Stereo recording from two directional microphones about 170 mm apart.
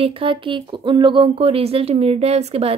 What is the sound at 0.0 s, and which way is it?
Speech, 30° right (ahead or behind).